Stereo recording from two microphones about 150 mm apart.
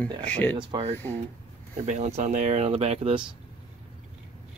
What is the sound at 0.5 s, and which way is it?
Speech, 40° right (ahead or behind).